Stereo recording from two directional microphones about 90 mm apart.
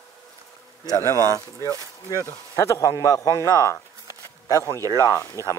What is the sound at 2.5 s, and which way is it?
Speech, 35° left (ahead or behind).